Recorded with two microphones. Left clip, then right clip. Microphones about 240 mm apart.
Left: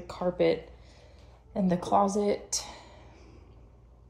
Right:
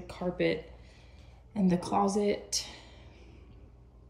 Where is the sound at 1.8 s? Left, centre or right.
Centre.